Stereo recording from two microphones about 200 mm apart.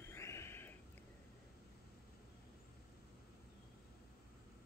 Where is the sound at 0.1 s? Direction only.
15° left (ahead or behind).